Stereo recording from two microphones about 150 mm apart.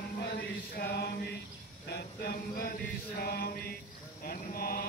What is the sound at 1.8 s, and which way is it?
Chant, 90° left.